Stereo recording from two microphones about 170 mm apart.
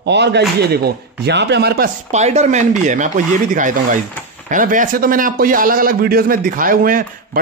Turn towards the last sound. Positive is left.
turn(degrees=-55)  # may be behind; listen again after turning